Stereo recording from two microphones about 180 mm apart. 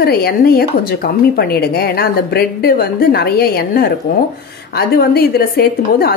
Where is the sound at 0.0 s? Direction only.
60° left (ahead or behind).